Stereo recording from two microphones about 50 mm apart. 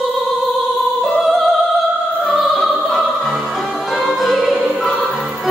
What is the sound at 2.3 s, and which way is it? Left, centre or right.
Opera, centre.